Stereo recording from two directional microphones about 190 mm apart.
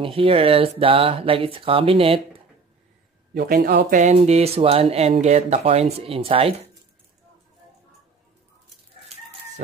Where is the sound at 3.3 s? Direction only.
55° right (ahead or behind).